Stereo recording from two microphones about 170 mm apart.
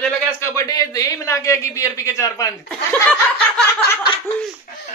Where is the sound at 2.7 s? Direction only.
5° left (ahead or behind).